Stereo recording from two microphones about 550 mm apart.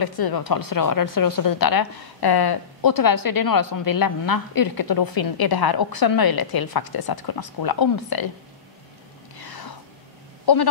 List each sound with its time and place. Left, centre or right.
0.0 s a woman's voice: left
9.4 s music: left
10.4 s speech: left